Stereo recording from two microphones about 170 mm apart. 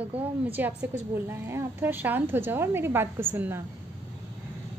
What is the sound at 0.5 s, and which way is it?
A woman's voice, 10° right (ahead or behind).